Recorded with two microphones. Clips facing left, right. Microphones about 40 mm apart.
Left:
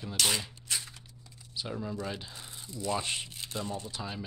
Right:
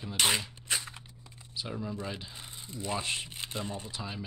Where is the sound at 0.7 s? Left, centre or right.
Right.